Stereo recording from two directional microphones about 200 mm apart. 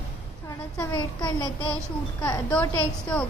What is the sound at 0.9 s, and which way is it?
A child's voice, 20° left (ahead or behind).